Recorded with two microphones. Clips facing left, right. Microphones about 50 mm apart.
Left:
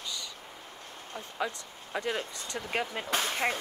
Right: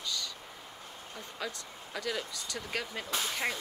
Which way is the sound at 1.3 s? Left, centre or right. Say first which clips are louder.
Left 6 dB; left.